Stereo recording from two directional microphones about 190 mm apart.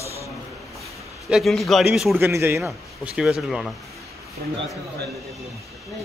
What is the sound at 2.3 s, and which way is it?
Speech, 15° right (ahead or behind).